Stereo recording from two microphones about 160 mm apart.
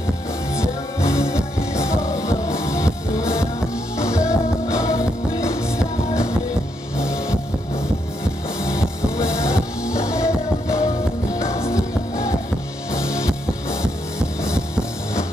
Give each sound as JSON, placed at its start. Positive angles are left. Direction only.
{"t": 0.6, "sound": "music", "side_deg": 20}
{"t": 7.0, "sound": "a sound", "side_deg": 15}
{"t": 9.1, "sound": "music", "side_deg": 20}